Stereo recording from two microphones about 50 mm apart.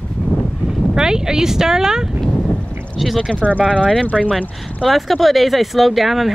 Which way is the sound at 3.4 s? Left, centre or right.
Right.